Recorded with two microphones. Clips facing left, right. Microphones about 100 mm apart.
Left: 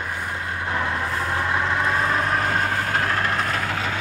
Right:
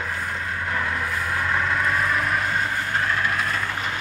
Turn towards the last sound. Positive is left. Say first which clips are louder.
# left 1 dB
turn(degrees=50)  # may be behind; listen again after turning